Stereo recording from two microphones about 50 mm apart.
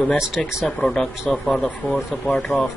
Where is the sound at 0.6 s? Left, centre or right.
Centre.